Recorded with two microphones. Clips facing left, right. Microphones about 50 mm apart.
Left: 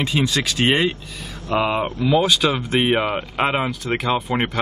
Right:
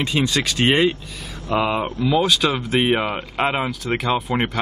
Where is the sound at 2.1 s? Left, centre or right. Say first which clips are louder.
Left 1 dB; centre.